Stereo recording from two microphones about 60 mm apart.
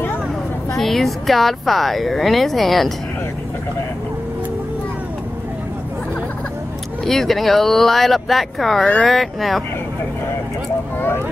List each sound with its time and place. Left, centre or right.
0.7 s speech: centre
7.1 s speech: centre
11.0 s speech: left